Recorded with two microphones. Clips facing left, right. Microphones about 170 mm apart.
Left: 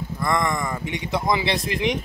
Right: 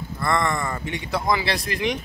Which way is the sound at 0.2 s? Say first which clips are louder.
Even; 15° left (ahead or behind).